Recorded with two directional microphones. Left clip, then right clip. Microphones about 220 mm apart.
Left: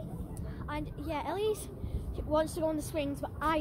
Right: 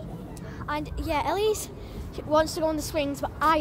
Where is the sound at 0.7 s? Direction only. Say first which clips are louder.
Right 9 dB; 25° right (ahead or behind).